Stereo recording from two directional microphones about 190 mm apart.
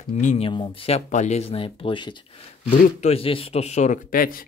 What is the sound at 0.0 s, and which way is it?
Speech, 40° left (ahead or behind).